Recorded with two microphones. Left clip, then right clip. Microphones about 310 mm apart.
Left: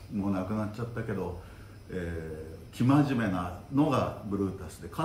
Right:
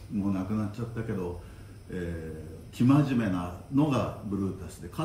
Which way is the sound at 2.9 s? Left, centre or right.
Centre.